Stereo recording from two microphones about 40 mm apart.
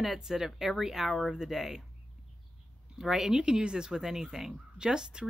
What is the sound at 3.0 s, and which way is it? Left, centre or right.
Speech, centre.